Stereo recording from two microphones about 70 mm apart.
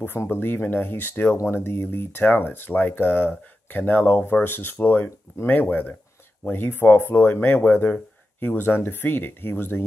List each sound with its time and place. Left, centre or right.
0.0 s speech: left
1.3 s speech: left